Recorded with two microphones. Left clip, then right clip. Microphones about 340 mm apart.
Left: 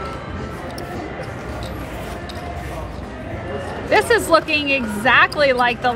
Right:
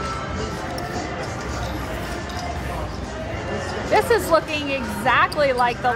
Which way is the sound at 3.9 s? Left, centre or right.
Left.